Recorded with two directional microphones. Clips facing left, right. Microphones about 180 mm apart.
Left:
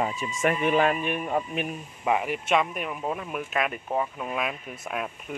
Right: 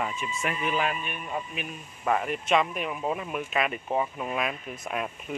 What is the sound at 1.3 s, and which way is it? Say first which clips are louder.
Speech: left 6 dB; 50° left (ahead or behind).